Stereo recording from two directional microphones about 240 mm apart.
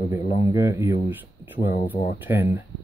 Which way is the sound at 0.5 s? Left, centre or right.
Centre.